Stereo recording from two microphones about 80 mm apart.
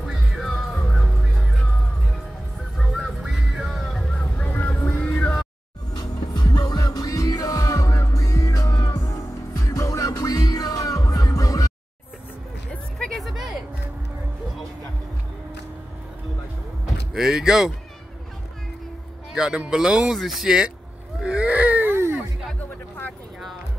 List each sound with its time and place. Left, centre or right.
0.0 s music: centre
2.8 s music: centre
4.1 s vehicle: centre
4.5 s music: left
5.2 s music: centre
5.9 s music: left
13.2 s music: centre
16.8 s a sound: centre
19.3 s speech: centre
21.2 s baby cry: centre; by 22.2 s right